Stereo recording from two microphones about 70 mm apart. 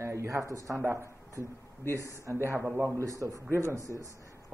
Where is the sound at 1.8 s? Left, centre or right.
Left.